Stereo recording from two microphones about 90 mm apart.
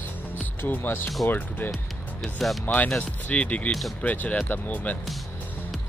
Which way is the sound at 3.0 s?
15° left (ahead or behind).